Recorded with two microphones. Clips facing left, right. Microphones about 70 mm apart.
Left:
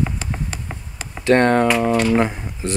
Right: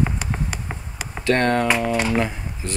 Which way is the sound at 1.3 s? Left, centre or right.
Left.